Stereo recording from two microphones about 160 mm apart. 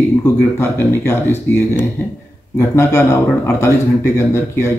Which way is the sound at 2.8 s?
15° left (ahead or behind).